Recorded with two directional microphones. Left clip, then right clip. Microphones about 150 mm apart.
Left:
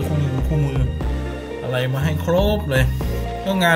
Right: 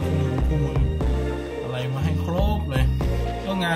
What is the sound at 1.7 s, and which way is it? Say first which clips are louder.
Speech: left 6 dB; 30° left (ahead or behind).